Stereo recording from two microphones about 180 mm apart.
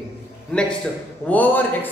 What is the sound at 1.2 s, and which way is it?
Speech, 10° left (ahead or behind).